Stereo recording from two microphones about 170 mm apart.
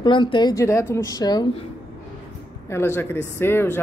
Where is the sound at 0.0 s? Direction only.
30° left (ahead or behind).